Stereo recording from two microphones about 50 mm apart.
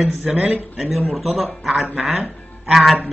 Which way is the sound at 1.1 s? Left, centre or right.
Centre.